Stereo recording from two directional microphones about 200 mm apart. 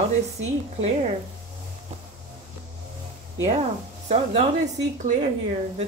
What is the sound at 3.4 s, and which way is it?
Speech, 30° right (ahead or behind).